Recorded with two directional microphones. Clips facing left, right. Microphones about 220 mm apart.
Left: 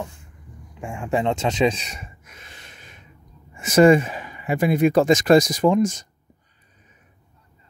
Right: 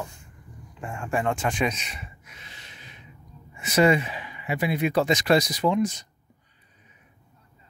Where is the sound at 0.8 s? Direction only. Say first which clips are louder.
Left 4 dB; 15° left (ahead or behind); by 3.0 s 50° left (ahead or behind).